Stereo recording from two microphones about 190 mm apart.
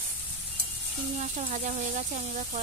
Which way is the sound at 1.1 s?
40° right (ahead or behind).